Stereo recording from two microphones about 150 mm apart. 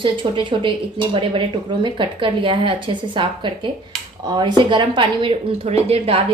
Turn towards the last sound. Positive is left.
turn(degrees=-40)  # may be behind; listen again after turning